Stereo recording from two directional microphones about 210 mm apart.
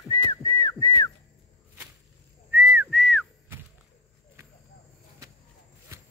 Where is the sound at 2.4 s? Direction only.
10° right (ahead or behind).